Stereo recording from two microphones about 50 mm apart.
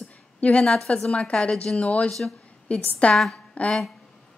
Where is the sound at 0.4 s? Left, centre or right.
Left.